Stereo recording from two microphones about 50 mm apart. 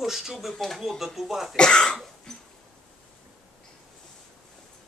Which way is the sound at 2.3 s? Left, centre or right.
Centre.